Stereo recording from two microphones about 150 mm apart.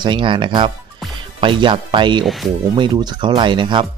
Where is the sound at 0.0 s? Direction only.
35° right (ahead or behind).